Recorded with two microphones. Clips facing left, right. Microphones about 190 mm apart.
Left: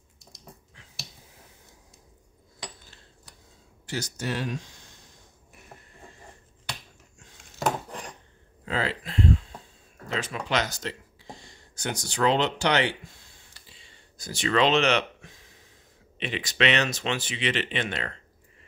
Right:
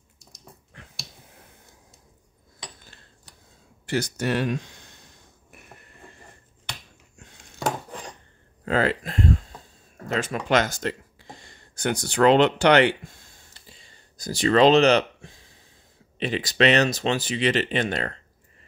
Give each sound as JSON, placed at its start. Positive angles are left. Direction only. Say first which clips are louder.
{"t": 0.7, "sound": "finger snapping", "louder": "right 7 dB", "side_deg": -55}
{"t": 3.8, "sound": "speech", "louder": "right 7 dB", "side_deg": -60}
{"t": 8.6, "sound": "a sound", "louder": "right 7 dB", "side_deg": -50}
{"t": 10.0, "sound": "speech", "louder": "right 5 dB", "side_deg": -50}
{"t": 13.7, "sound": "a sound", "louder": "right 2 dB", "side_deg": -40}
{"t": 16.2, "sound": "speech", "louder": "right 5 dB", "side_deg": -40}